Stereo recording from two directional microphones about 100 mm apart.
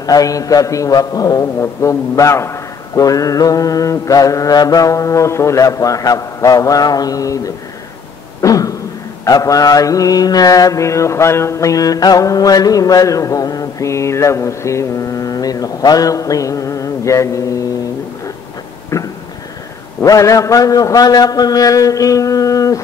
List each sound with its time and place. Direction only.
0.0 s mantra: 35° left (ahead or behind)
8.4 s beatboxing: 35° left (ahead or behind)
9.2 s mantra: 35° left (ahead or behind)
20.0 s mantra: 30° left (ahead or behind)